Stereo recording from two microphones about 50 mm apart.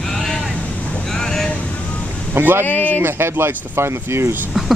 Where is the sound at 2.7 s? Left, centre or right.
Left.